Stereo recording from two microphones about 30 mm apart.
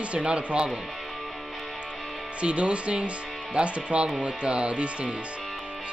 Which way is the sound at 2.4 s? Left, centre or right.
Right.